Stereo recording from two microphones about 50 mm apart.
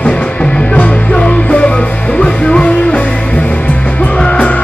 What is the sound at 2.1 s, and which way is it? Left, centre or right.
Music, left.